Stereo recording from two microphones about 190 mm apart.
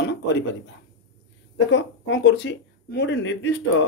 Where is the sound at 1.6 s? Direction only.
75° left (ahead or behind).